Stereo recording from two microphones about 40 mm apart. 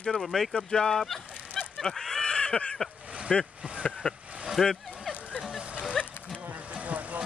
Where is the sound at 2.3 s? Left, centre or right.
Left.